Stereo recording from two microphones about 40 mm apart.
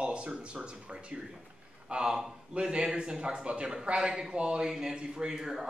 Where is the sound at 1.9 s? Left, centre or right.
Centre.